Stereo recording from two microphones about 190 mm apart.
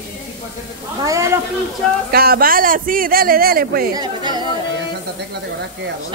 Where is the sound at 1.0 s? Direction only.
15° right (ahead or behind).